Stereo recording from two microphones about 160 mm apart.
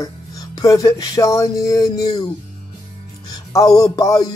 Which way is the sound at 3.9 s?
25° left (ahead or behind).